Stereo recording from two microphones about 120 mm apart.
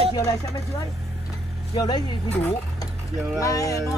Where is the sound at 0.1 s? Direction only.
30° left (ahead or behind).